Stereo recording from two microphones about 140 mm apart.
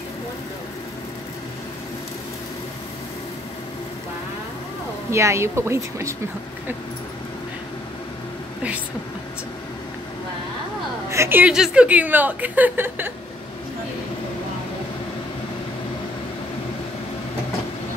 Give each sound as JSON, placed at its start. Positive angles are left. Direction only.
{"t": 5.1, "sound": "speech", "side_deg": -20}
{"t": 11.1, "sound": "speech", "side_deg": -20}